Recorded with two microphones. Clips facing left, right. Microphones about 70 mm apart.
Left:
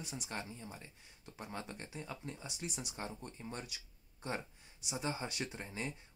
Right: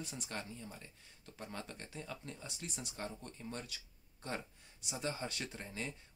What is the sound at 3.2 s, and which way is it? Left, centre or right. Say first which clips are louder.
Speech: even; left.